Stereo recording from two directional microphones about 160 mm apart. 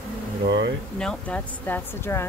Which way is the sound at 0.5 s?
90° right.